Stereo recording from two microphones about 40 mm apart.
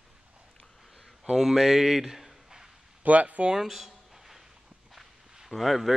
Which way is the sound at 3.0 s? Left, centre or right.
Right.